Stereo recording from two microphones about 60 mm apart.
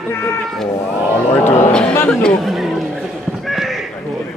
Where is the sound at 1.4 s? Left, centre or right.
Left.